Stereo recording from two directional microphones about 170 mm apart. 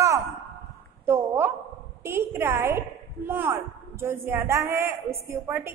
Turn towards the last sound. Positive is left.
turn(degrees=-15)  # may be behind; listen again after turning